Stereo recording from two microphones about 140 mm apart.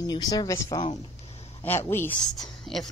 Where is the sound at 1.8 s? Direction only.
15° left (ahead or behind).